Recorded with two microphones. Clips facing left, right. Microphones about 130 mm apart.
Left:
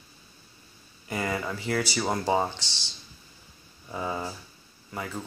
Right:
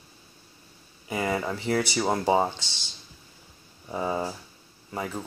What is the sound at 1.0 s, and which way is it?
Speech, 20° right (ahead or behind).